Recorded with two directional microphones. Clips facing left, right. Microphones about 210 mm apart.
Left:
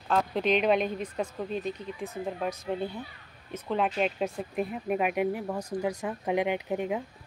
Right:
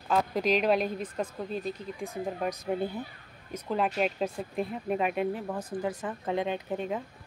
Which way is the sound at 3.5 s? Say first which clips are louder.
Left 1 dB; 5° right (ahead or behind).